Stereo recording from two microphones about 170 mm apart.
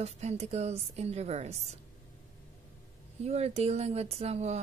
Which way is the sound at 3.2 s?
40° right (ahead or behind).